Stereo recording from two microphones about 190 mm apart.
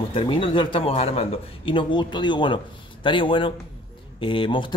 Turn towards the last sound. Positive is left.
turn(degrees=25)  # may be behind; listen again after turning